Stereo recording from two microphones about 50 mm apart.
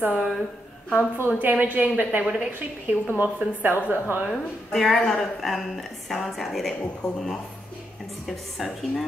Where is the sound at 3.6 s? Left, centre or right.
Right.